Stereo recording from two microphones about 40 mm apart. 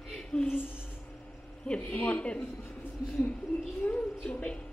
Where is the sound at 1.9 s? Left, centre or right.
Left.